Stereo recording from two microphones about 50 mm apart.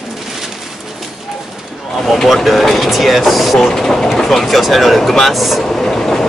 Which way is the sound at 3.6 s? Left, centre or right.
Centre.